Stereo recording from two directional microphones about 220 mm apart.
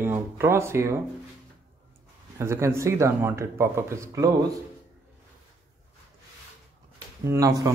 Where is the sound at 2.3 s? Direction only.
10° right (ahead or behind).